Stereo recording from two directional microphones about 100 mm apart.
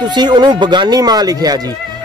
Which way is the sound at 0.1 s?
45° right (ahead or behind).